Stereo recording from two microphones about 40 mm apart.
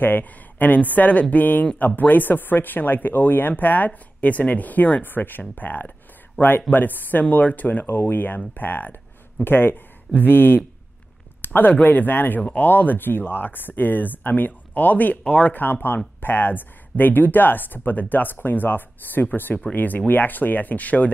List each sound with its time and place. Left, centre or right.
0.0 s speech: left
5.0 s speech: left
6.4 s speech: right
6.7 s speech: left
7.9 s speech: left